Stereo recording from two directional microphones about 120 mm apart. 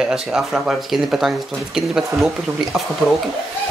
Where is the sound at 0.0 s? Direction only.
5° right (ahead or behind).